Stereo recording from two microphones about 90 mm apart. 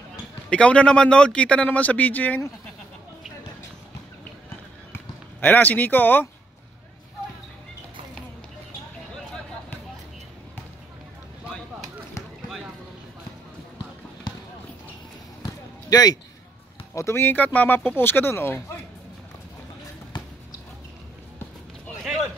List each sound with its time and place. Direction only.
0.5 s speech: 10° left (ahead or behind)
5.4 s speech: 20° left (ahead or behind)
15.9 s a man's voice: 45° left (ahead or behind)
16.9 s speech: 30° left (ahead or behind)